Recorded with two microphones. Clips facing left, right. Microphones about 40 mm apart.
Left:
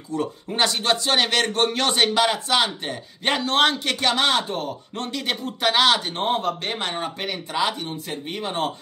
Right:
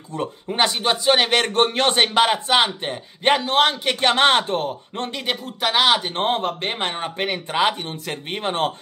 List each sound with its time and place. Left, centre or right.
0.1 s speech: right
0.5 s speech: centre
3.3 s speech: centre
4.0 s speech: right
5.2 s speech: centre
6.1 s speech: right
6.6 s speech: right